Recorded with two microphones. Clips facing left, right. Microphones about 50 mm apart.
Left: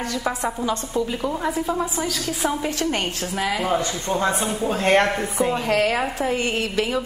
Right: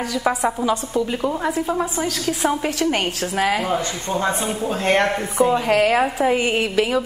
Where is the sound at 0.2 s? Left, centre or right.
Centre.